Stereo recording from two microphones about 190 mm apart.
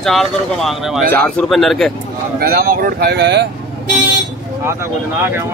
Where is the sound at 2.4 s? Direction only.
50° right (ahead or behind).